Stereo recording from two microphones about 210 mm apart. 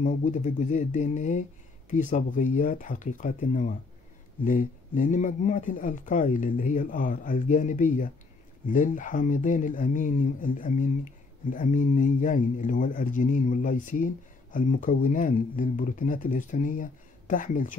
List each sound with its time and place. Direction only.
0.0 s speech: 35° left (ahead or behind)